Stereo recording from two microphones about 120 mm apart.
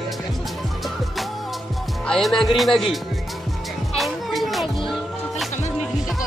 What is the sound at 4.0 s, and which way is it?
Music, centre (ahead or behind).